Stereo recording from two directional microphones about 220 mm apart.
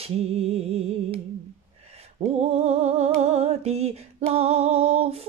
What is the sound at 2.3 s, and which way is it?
Music, 30° right (ahead or behind).